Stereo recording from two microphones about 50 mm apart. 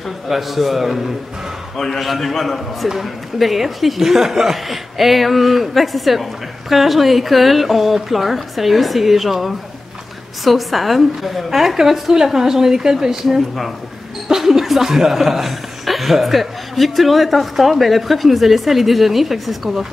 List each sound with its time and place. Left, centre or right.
0.3 s a woman's voice: centre